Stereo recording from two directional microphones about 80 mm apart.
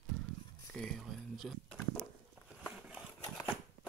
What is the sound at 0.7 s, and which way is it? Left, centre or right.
Speech, centre.